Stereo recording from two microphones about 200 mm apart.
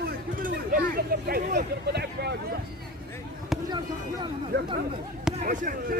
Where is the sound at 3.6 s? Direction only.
20° right (ahead or behind).